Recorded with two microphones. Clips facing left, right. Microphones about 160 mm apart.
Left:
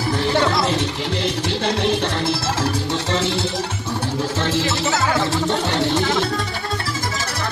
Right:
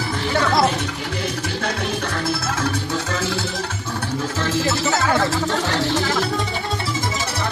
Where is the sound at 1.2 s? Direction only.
25° left (ahead or behind).